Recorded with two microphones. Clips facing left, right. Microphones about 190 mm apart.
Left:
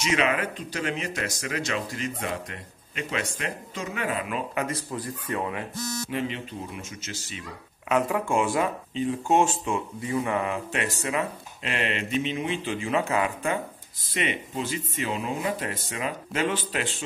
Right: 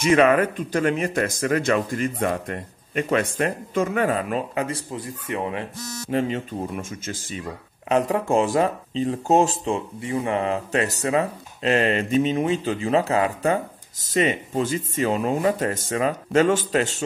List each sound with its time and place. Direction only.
0.0 s speech: 50° right (ahead or behind); by 5.7 s 25° right (ahead or behind)
6.0 s speech: 40° right (ahead or behind)
7.9 s speech: 35° right (ahead or behind)